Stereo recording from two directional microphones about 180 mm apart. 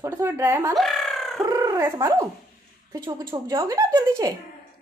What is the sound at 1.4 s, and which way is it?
A woman's voice, 20° right (ahead or behind).